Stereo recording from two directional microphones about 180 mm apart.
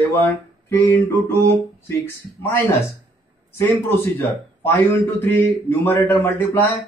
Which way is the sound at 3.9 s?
10° left (ahead or behind).